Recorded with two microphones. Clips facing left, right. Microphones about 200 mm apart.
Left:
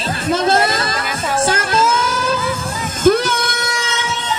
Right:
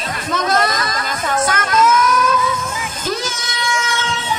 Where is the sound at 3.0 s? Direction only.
55° left (ahead or behind).